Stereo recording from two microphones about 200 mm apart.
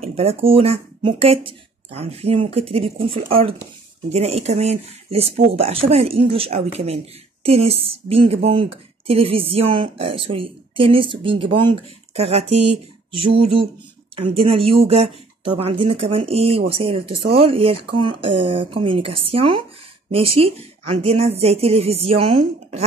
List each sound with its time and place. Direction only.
0.0 s speech: 30° right (ahead or behind)